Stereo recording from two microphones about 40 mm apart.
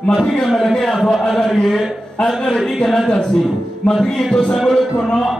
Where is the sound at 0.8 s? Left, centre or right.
Centre.